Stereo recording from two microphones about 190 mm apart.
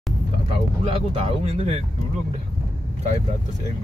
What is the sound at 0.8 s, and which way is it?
Speech, 30° right (ahead or behind).